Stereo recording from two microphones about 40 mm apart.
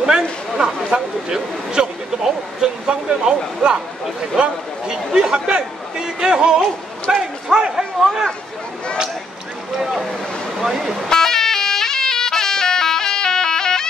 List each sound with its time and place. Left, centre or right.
0.6 s speech: right
0.9 s a sound: centre
4.9 s speech: centre
5.3 s speech: right
7.2 s a sound: centre
9.8 s boat: centre
10.6 s vehicle horn: centre
11.1 s music: centre